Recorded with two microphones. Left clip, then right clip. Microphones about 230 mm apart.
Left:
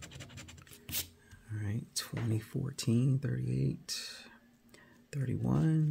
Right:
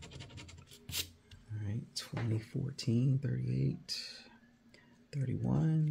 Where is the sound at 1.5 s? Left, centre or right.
Left.